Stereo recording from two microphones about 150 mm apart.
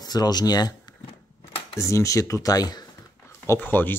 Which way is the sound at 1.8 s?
20° left (ahead or behind).